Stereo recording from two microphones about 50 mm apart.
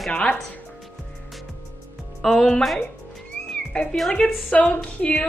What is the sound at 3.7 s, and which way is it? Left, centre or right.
A woman's voice, left.